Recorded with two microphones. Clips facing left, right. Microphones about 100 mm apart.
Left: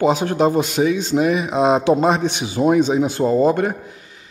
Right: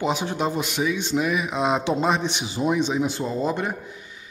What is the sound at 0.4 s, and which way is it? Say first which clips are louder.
Speech: left 8 dB; 35° left (ahead or behind).